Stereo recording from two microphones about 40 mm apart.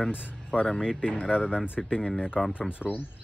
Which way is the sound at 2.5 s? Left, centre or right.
Left.